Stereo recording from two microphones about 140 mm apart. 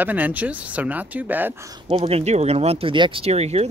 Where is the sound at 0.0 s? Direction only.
10° right (ahead or behind).